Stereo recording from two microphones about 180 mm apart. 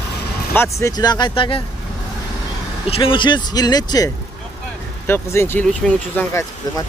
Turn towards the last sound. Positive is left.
turn(degrees=15)  # may be behind; listen again after turning